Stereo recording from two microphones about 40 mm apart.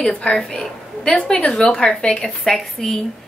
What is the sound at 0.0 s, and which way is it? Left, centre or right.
A woman's voice, left.